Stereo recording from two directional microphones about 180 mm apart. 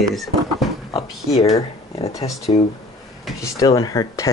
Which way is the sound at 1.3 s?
35° left (ahead or behind).